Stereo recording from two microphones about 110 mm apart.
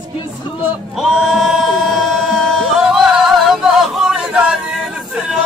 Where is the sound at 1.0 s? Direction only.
Centre (ahead or behind).